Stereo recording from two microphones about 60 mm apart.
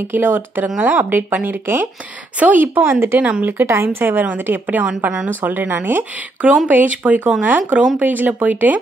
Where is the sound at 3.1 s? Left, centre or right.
Right.